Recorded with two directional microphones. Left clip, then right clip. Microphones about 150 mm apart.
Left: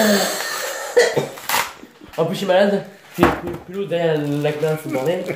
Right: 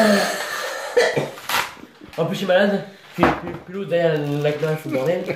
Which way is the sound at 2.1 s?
20° right (ahead or behind).